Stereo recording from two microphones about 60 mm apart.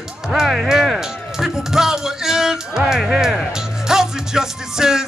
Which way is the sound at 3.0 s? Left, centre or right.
Centre.